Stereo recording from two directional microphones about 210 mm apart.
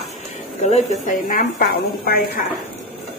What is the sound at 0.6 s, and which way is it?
A woman's voice, 35° left (ahead or behind).